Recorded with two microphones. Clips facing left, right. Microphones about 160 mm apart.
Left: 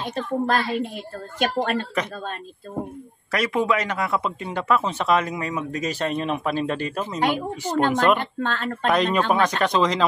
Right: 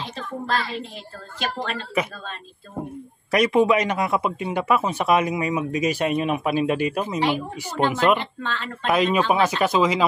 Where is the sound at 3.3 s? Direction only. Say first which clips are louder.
Right 4 dB; 20° right (ahead or behind).